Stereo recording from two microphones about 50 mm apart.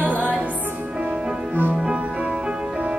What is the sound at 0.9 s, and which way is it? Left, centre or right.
Music, centre.